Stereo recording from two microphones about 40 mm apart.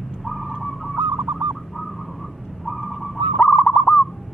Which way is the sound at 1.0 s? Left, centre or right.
Right.